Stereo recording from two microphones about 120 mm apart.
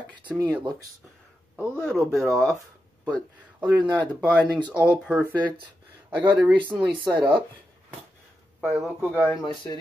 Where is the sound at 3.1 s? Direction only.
40° right (ahead or behind).